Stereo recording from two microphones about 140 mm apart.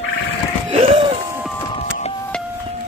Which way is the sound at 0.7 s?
40° right (ahead or behind).